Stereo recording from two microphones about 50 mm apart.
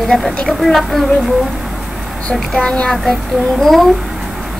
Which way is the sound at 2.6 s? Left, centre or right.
Left.